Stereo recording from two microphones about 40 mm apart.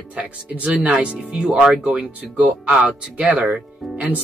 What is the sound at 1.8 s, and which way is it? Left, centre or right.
Speech, right.